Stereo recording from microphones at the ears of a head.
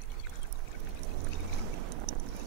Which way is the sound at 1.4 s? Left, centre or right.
Right.